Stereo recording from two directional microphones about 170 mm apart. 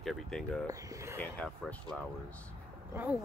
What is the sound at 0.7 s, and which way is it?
Speech, 20° right (ahead or behind).